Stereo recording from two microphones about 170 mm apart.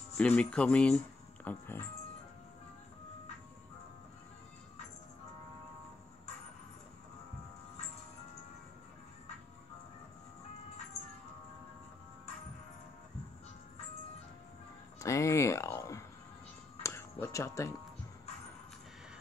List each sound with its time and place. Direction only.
0.2 s speech: 5° left (ahead or behind)
15.0 s a sound: 20° left (ahead or behind)
16.8 s music: 15° left (ahead or behind)